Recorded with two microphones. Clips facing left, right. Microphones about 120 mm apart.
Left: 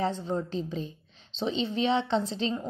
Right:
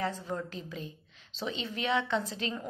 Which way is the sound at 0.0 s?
25° left (ahead or behind).